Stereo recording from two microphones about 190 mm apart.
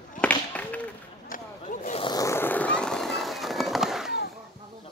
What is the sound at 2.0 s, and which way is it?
Vehicle, 20° left (ahead or behind).